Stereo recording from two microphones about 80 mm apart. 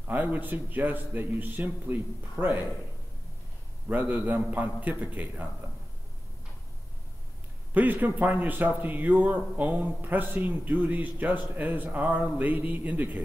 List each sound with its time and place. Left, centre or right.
0.0 s a man's voice: right
3.9 s a man's voice: centre
7.7 s a man's voice: right